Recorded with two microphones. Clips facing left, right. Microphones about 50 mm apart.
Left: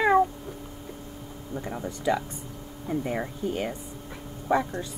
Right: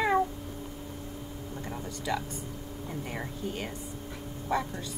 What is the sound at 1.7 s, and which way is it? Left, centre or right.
Speech, left.